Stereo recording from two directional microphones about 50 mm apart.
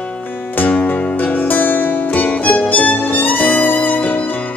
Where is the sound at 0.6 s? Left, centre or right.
Left.